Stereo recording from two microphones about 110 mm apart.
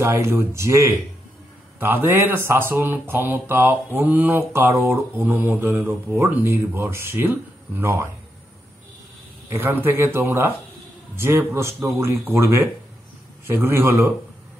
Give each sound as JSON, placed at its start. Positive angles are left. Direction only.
{"t": 0.0, "sound": "speech", "side_deg": -25}
{"t": 9.5, "sound": "speech", "side_deg": -20}